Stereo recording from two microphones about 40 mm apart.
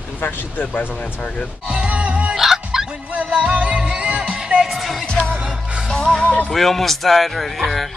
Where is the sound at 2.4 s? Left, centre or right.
Centre.